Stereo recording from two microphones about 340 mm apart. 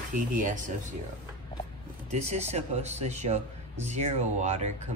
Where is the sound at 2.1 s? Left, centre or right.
Centre.